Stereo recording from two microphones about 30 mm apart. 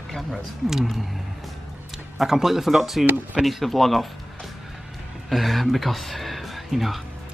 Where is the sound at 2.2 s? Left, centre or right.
Centre.